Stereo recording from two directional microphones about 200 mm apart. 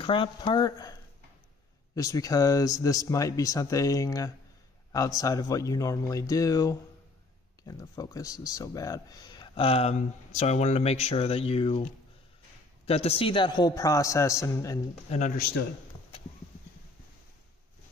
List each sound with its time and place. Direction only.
0.0 s a man's voice: 25° left (ahead or behind)
2.0 s a man's voice: 15° left (ahead or behind)
15.0 s speech: 35° left (ahead or behind)